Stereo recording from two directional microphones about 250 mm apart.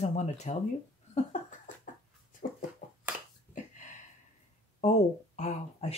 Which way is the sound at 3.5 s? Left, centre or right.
Left.